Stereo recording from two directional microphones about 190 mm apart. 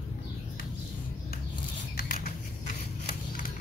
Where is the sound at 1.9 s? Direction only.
50° left (ahead or behind).